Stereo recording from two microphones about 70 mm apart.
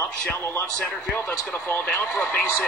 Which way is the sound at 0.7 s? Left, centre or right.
Centre.